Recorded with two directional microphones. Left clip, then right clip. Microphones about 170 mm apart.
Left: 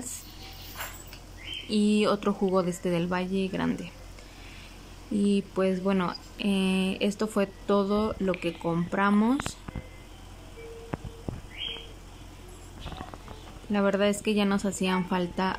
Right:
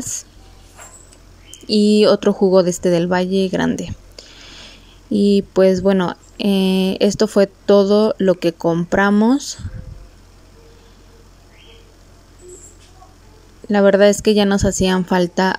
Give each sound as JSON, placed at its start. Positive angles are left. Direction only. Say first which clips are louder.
{"t": 1.7, "sound": "speech", "louder": "right 13 dB", "side_deg": -35}
{"t": 5.1, "sound": "speech", "louder": "right 13 dB", "side_deg": -40}
{"t": 13.7, "sound": "speech", "louder": "right 14 dB", "side_deg": -40}